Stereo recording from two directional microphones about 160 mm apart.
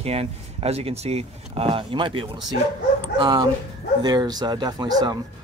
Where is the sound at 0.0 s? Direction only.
40° right (ahead or behind).